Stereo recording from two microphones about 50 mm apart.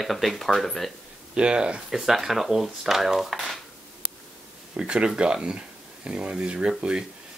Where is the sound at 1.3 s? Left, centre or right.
Right.